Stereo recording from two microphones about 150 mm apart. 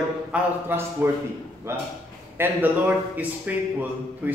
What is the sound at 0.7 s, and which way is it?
Speech, 15° right (ahead or behind).